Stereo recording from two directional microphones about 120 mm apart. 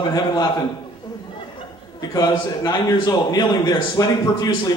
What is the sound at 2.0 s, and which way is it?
A man's voice, 35° left (ahead or behind).